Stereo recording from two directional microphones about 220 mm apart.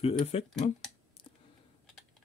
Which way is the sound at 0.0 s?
25° left (ahead or behind).